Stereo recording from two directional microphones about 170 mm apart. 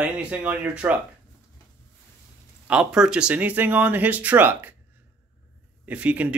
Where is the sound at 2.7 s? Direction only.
5° right (ahead or behind).